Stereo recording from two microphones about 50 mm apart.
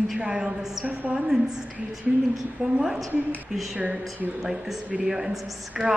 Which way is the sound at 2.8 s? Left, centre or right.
Centre.